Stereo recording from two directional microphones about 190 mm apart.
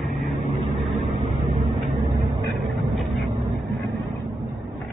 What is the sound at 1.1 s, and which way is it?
Vehicle, 25° right (ahead or behind).